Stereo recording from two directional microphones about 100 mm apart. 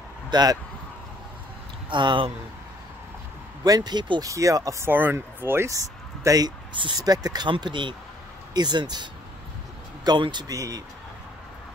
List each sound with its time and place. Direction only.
0.3 s speech: 45° right (ahead or behind)
1.9 s speech: 50° right (ahead or behind)
3.6 s speech: 40° right (ahead or behind)
4.3 s speech: 35° right (ahead or behind)
6.7 s speech: 55° right (ahead or behind)
7.0 s speech: 40° right (ahead or behind)
7.6 s speech: 55° right (ahead or behind)
10.5 s speech: 35° right (ahead or behind)